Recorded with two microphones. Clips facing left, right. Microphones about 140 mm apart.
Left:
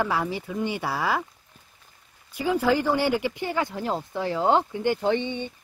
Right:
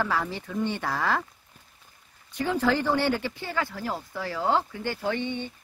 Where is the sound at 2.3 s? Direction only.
10° left (ahead or behind).